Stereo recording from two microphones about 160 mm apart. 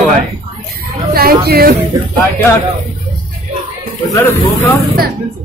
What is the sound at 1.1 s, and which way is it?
Speech, 70° right (ahead or behind).